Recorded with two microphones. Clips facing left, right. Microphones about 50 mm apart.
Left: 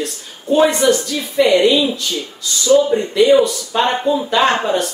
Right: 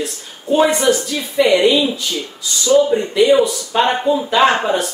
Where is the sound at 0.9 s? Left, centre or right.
Centre.